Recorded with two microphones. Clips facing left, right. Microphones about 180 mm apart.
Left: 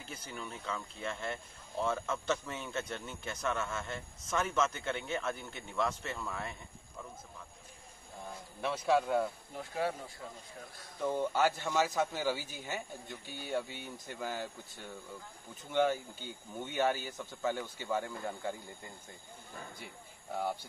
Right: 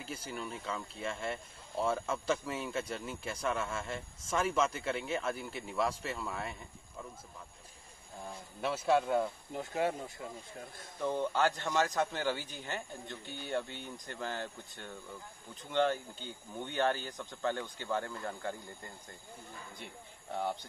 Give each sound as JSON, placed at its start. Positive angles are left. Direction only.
{"t": 0.0, "sound": "speech", "side_deg": -5}
{"t": 8.5, "sound": "a man's voice", "side_deg": -5}
{"t": 9.5, "sound": "speech", "side_deg": -20}
{"t": 11.0, "sound": "a man's voice", "side_deg": 10}